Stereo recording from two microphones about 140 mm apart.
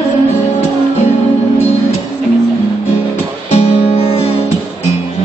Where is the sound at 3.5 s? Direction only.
45° left (ahead or behind).